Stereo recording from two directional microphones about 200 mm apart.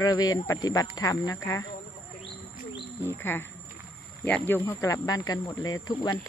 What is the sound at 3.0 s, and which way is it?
Speech, 10° left (ahead or behind).